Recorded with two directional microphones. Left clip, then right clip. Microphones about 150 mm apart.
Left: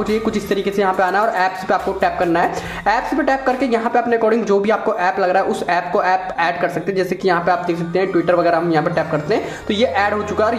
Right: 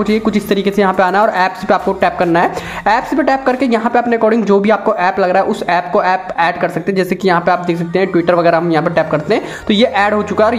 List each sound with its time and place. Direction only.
0.0 s speech: 25° right (ahead or behind)